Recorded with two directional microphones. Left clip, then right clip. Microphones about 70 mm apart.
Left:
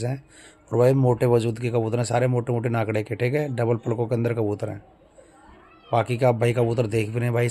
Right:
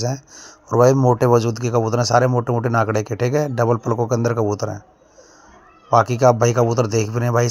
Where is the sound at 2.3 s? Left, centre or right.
Right.